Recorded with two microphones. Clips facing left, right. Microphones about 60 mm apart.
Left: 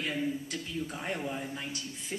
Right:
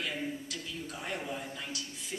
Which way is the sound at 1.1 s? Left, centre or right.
Centre.